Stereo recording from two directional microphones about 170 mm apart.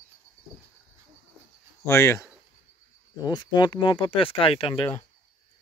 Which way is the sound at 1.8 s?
15° left (ahead or behind).